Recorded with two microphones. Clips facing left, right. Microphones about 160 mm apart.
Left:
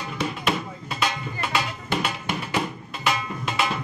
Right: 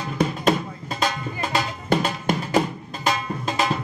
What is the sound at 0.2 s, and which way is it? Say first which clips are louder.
Music: right 6 dB; 40° right (ahead or behind).